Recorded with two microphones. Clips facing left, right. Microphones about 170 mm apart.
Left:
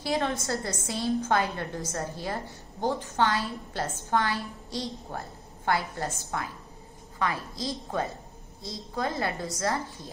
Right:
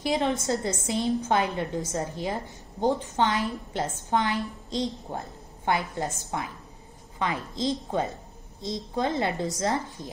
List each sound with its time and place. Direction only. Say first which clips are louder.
0.0 s a woman's voice: right 3 dB; 20° right (ahead or behind)